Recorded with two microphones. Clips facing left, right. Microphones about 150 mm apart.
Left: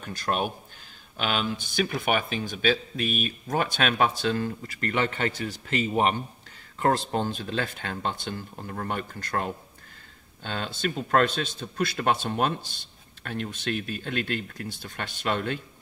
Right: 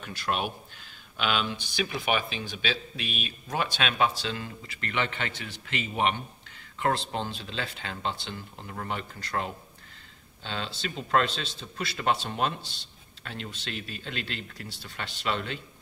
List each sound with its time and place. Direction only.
0.0 s speech: 40° left (ahead or behind)